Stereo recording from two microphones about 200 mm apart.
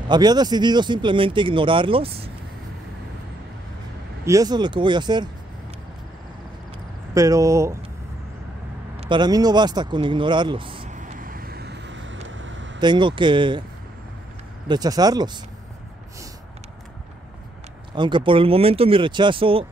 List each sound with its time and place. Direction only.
0.1 s speech: 20° right (ahead or behind)
4.2 s speech: 15° right (ahead or behind)
7.2 s speech: 15° right (ahead or behind)
9.0 s speech: 20° right (ahead or behind)
10.9 s vehicle: 40° right (ahead or behind); by 12.8 s 65° right (ahead or behind)
12.8 s speech: 25° right (ahead or behind)
14.7 s speech: 20° right (ahead or behind)
17.9 s speech: 25° right (ahead or behind)